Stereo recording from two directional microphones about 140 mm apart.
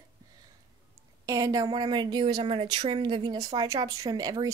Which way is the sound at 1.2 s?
25° right (ahead or behind).